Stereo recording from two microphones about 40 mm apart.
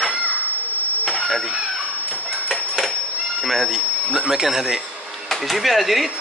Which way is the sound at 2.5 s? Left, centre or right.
Centre.